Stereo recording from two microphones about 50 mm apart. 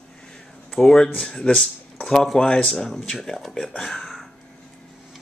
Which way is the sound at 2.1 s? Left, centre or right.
Centre.